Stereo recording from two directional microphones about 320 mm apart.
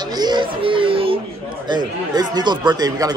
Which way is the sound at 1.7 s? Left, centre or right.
Centre.